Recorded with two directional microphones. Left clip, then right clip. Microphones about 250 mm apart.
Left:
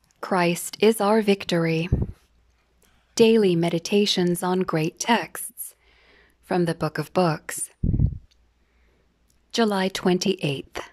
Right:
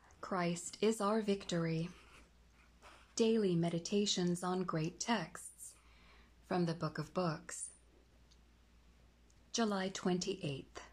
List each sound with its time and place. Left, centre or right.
0.2 s speech: left
3.2 s speech: left
9.5 s speech: left